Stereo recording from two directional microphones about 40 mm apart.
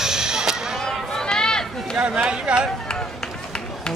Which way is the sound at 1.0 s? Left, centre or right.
Centre.